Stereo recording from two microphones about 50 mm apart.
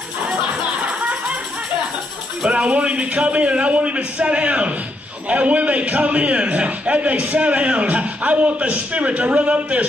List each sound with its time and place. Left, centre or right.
0.8 s music: right
2.5 s a man's voice: right